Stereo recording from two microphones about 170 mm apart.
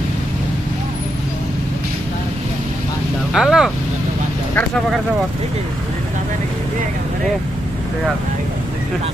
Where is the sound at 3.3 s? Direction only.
Centre (ahead or behind).